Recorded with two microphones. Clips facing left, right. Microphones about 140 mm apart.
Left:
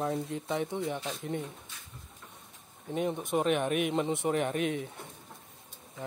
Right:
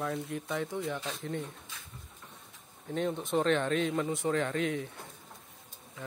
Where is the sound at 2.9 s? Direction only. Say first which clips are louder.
Left 1 dB; 15° left (ahead or behind).